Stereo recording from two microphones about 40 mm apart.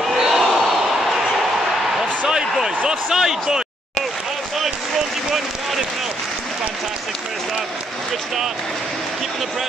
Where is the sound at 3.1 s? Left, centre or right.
Centre.